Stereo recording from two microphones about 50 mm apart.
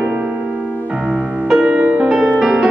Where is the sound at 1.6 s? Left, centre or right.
Right.